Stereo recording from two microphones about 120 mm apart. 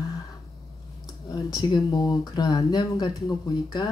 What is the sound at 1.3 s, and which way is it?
Speech, 35° left (ahead or behind).